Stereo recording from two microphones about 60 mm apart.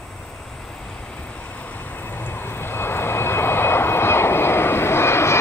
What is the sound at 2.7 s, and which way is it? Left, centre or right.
Vehicle, left.